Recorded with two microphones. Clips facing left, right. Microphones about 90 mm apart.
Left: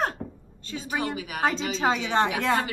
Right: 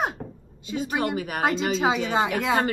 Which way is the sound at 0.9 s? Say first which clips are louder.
Right 2 dB; 45° right (ahead or behind).